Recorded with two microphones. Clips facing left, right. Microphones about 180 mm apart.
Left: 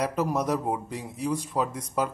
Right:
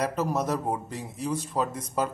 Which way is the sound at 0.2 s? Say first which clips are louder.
Left 1 dB; 15° left (ahead or behind).